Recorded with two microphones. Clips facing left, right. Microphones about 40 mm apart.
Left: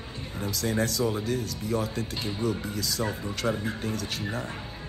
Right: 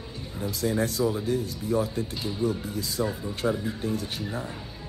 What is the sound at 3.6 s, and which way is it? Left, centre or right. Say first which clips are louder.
Speech: right 2 dB; left.